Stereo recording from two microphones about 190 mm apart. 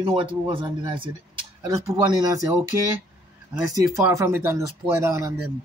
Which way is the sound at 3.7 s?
15° right (ahead or behind).